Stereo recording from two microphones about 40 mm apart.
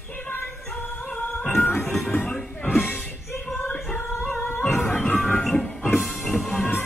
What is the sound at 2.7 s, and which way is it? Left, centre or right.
Music, left.